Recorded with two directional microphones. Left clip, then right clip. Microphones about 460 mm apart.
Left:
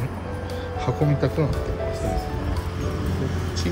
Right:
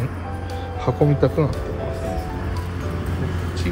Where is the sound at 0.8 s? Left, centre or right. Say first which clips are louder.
Right 5 dB; centre.